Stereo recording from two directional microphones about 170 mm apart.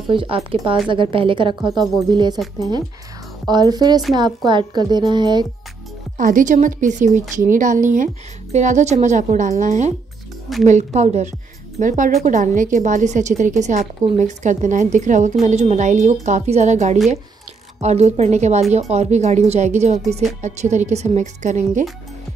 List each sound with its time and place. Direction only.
0.1 s speech: 30° right (ahead or behind)
3.4 s speech: 25° right (ahead or behind)
6.1 s a woman's voice: 50° right (ahead or behind)